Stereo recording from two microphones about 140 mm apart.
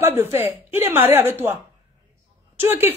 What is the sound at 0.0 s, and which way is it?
A woman's voice, 15° right (ahead or behind).